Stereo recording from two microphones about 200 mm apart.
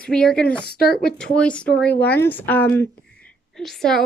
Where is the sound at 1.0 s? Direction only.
5° left (ahead or behind).